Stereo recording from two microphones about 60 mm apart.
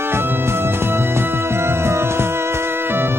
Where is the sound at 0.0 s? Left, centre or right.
Right.